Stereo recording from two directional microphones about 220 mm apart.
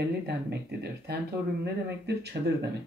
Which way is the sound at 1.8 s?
50° right (ahead or behind).